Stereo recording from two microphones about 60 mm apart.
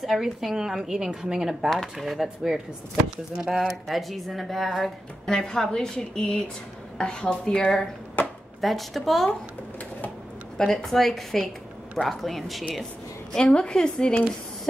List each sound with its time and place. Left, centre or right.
0.0 s a woman's voice: centre
1.7 s a woman's voice: centre
8.2 s a sound: left
8.5 s speech: centre
10.6 s speech: centre
13.3 s a woman's voice: centre